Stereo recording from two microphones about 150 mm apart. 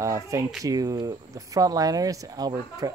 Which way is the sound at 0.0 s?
20° right (ahead or behind).